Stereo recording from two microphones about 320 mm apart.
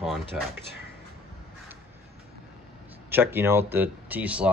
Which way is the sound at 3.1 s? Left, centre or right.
Centre.